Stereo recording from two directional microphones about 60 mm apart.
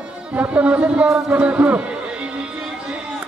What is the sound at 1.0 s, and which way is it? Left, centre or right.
Speech, centre.